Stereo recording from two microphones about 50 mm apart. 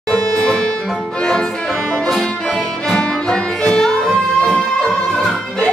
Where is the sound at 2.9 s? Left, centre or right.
Centre.